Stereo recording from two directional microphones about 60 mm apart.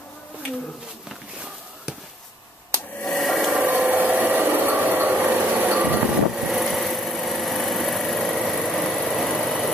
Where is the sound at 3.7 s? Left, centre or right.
Right.